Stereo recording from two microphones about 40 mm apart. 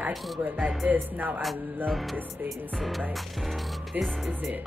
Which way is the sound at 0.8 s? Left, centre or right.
Right.